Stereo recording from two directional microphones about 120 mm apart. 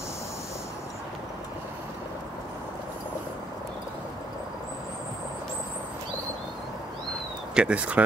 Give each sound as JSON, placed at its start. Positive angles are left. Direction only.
{"t": 7.5, "sound": "speech", "side_deg": -10}